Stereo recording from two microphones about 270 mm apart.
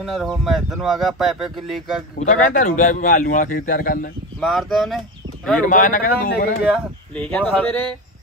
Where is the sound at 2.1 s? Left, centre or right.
Left.